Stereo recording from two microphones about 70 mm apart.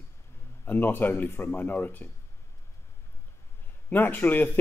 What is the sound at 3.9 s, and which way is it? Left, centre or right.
Speech, left.